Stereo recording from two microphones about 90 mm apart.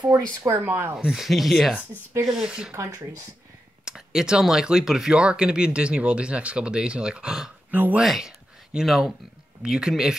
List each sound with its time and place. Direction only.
0.5 s speech: 25° right (ahead or behind)
0.9 s speech: 5° right (ahead or behind)
2.7 s speech: 40° right (ahead or behind)
3.8 s speech: 5° right (ahead or behind)
7.7 s speech: 20° right (ahead or behind)
8.0 s speech: 5° right (ahead or behind)